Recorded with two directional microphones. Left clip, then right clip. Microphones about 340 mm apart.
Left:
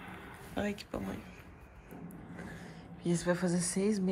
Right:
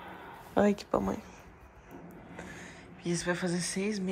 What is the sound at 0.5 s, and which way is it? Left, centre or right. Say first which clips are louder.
Speech: right 10 dB; centre.